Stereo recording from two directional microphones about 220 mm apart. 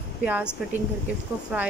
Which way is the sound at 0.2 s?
5° right (ahead or behind).